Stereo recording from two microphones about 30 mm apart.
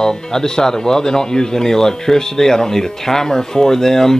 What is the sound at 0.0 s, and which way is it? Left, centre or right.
Speech, centre.